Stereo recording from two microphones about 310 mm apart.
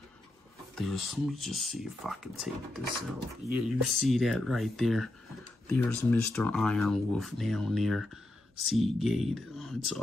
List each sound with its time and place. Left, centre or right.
0.7 s speech: centre